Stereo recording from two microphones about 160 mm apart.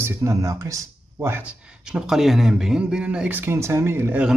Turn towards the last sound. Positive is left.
turn(degrees=-10)  # may be behind; listen again after turning